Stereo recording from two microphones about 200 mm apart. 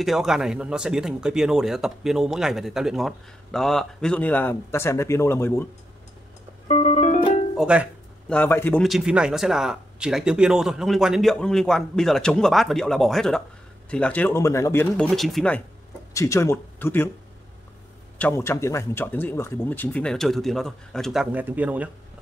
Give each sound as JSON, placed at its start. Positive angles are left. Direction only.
{"t": 0.0, "sound": "speech", "side_deg": 0}
{"t": 6.7, "sound": "music", "side_deg": 35}
{"t": 7.5, "sound": "music", "side_deg": -5}
{"t": 8.3, "sound": "speech", "side_deg": 10}
{"t": 8.8, "sound": "speech", "side_deg": 0}
{"t": 15.0, "sound": "speech", "side_deg": 0}
{"t": 16.1, "sound": "speech", "side_deg": 15}
{"t": 18.1, "sound": "speech", "side_deg": 10}